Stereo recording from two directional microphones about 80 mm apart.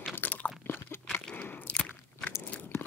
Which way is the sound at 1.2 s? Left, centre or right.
Left.